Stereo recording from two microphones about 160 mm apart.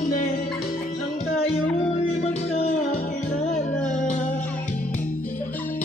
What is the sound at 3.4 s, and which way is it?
Music, 45° left (ahead or behind).